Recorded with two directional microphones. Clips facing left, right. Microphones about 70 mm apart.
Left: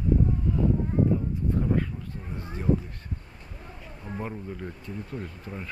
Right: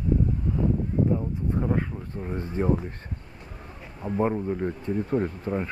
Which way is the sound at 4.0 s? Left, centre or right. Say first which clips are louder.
Right 10 dB; right.